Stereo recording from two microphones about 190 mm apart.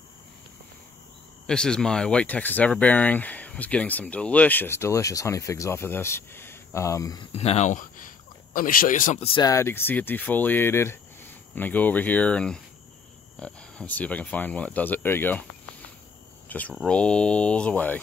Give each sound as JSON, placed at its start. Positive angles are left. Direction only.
{"t": 1.5, "sound": "speech", "side_deg": 5}
{"t": 7.3, "sound": "speech", "side_deg": 35}
{"t": 9.2, "sound": "speech", "side_deg": 30}
{"t": 9.5, "sound": "speech", "side_deg": 15}
{"t": 16.4, "sound": "cricket", "side_deg": 10}
{"t": 16.7, "sound": "speech", "side_deg": 5}